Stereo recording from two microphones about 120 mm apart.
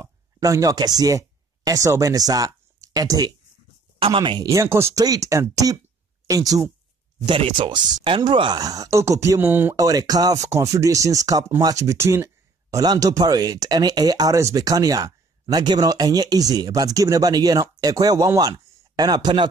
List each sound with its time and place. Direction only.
0.0 s speech: 30° right (ahead or behind)
4.0 s speech: 45° right (ahead or behind)
4.5 s speech: 25° right (ahead or behind)
7.2 s speech: 45° right (ahead or behind)
8.5 s speech: 30° right (ahead or behind)
9.8 s speech: 30° right (ahead or behind)